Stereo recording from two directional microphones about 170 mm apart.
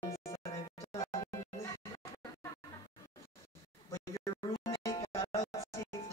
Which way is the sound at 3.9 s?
15° left (ahead or behind).